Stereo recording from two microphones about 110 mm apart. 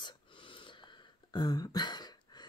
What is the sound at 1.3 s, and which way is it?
Speech, 35° left (ahead or behind).